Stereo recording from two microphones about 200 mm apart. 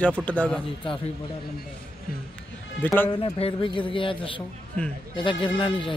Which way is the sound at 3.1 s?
25° left (ahead or behind).